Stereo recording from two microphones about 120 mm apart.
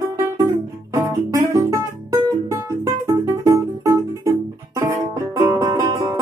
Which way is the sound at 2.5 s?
25° right (ahead or behind).